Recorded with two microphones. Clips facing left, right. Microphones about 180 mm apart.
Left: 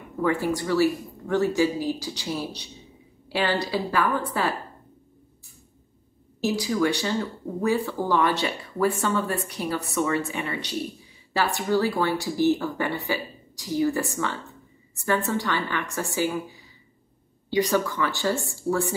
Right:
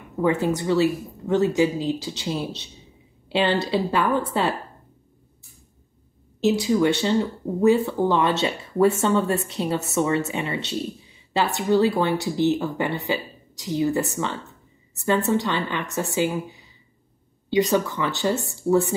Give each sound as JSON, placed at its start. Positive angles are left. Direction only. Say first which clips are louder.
{"t": 0.2, "sound": "speech", "louder": "right 3 dB", "side_deg": -20}
{"t": 6.4, "sound": "speech", "louder": "right 4 dB", "side_deg": -25}